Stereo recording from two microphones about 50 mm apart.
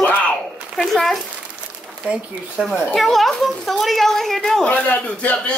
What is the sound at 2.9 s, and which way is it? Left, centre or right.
A woman's voice, centre.